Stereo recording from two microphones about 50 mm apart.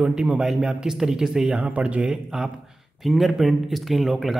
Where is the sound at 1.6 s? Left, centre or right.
Right.